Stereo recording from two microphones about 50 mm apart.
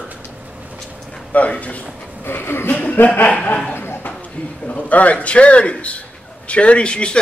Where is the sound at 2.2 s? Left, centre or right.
Left.